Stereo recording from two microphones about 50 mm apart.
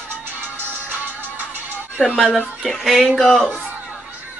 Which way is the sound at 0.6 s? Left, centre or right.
Right.